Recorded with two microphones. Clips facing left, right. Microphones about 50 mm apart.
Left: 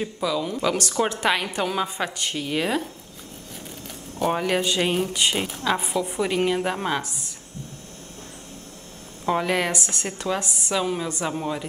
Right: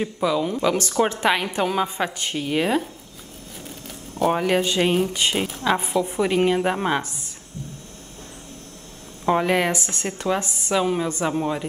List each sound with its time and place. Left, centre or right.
0.0 s a woman's voice: centre
4.2 s speech: centre
5.6 s a woman's voice: centre
9.2 s a woman's voice: centre
9.7 s speech: right
10.0 s a woman's voice: centre